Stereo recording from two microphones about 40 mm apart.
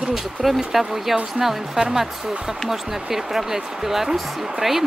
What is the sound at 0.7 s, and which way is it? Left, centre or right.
Speech, centre.